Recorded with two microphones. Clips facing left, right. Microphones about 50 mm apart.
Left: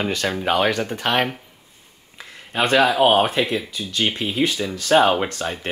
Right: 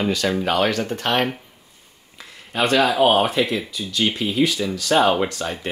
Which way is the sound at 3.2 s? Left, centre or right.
Left.